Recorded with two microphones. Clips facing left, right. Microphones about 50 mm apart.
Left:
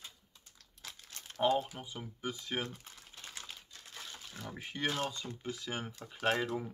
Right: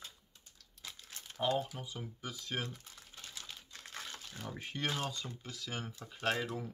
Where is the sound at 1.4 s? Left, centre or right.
Centre.